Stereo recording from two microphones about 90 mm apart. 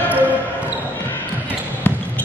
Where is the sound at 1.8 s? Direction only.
15° left (ahead or behind).